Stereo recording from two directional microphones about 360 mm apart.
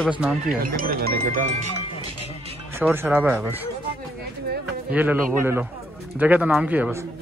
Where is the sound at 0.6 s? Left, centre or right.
Right.